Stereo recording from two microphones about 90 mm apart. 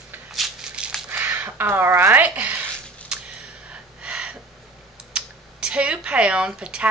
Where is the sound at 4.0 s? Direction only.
10° right (ahead or behind).